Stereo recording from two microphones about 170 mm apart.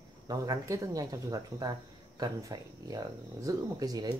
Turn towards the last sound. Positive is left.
turn(degrees=-25)  # may be behind; listen again after turning